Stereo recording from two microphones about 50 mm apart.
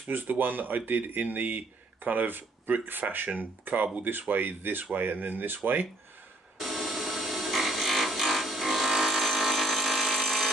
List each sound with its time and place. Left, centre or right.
0.1 s speech: right
6.6 s tools: centre